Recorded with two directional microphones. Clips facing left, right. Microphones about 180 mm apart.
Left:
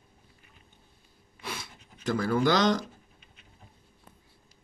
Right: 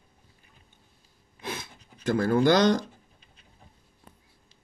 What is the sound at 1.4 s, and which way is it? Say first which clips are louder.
Pant: right 3 dB; 50° right (ahead or behind).